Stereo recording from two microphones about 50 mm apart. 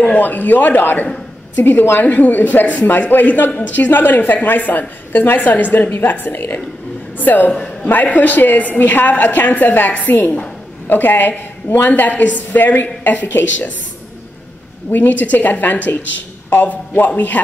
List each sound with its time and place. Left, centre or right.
0.0 s a woman's voice: left
14.9 s a woman's voice: left